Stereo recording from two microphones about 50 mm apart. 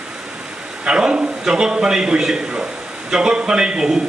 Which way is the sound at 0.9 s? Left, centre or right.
Centre.